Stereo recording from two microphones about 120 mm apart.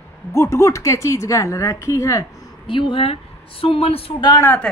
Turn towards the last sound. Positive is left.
turn(degrees=30)  # may be behind; listen again after turning